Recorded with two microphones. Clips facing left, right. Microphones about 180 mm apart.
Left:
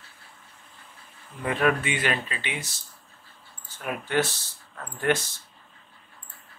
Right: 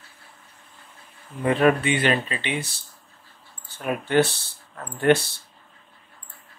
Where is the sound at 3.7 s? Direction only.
30° right (ahead or behind).